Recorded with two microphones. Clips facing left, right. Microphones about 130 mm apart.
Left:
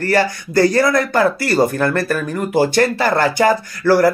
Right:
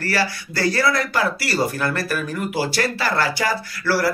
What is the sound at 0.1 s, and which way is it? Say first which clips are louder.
Speech: left 9 dB; 50° left (ahead or behind).